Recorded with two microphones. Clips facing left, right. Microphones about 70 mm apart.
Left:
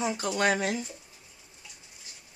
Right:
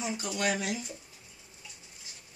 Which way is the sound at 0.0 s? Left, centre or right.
Left.